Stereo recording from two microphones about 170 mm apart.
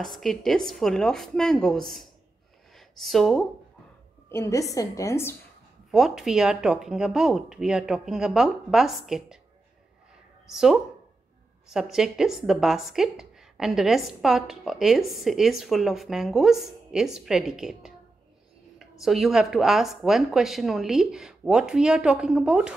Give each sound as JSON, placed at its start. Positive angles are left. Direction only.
{"t": 0.0, "sound": "a woman's voice", "side_deg": 0}
{"t": 4.3, "sound": "a woman's voice", "side_deg": 15}
{"t": 5.9, "sound": "a woman's voice", "side_deg": 0}
{"t": 10.5, "sound": "a woman's voice", "side_deg": 0}